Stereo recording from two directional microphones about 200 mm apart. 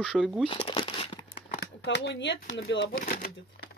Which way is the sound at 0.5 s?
25° left (ahead or behind).